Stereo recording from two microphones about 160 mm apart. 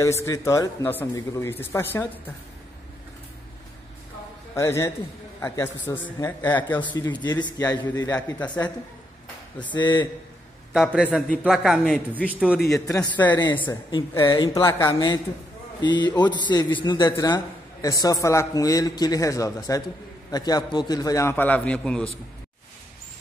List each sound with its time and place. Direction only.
0.0 s speech: 20° left (ahead or behind)
4.6 s speech: 15° left (ahead or behind)
7.0 s a man's voice: 25° left (ahead or behind)
8.1 s speech: 10° left (ahead or behind)
9.7 s a man's voice: 30° left (ahead or behind)
11.4 s a man's voice: centre (ahead or behind)
12.8 s a man's voice: 20° left (ahead or behind)
13.4 s a man's voice: 25° left (ahead or behind)
14.1 s a man's voice: 15° left (ahead or behind)
14.9 s a man's voice: 30° left (ahead or behind); by 22.1 s 5° left (ahead or behind)